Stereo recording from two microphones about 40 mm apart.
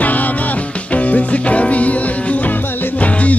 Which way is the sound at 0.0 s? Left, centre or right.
Left.